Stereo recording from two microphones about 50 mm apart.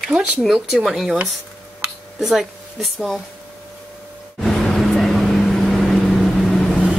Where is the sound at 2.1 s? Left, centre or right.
Centre.